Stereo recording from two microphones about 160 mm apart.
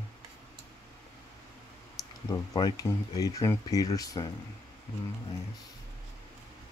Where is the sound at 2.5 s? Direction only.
25° left (ahead or behind).